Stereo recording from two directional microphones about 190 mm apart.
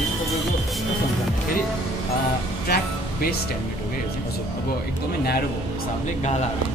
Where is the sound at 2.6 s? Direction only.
55° left (ahead or behind).